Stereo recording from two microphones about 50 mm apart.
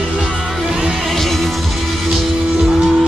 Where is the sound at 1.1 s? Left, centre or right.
Centre.